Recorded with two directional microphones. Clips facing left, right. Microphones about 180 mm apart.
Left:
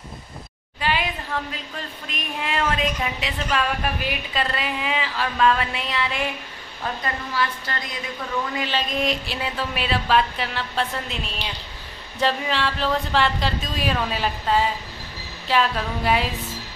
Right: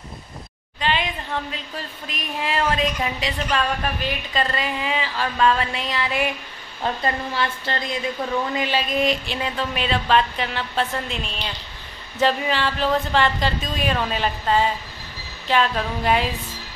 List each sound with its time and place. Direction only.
0.7 s a sound: 10° left (ahead or behind)
2.4 s a woman's voice: centre (ahead or behind)
6.8 s a woman's voice: 25° right (ahead or behind)
8.5 s a woman's voice: 10° right (ahead or behind)
12.2 s a woman's voice: centre (ahead or behind)